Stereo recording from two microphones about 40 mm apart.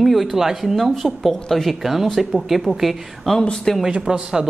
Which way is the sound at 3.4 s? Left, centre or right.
Centre.